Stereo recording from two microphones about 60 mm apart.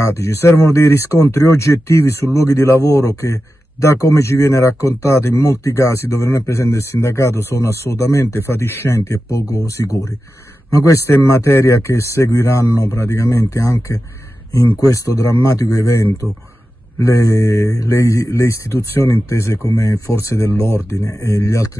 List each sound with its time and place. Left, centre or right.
0.0 s speech: left
9.6 s speech: left
10.7 s a man's voice: left
14.9 s a man's voice: left
19.2 s a man's voice: left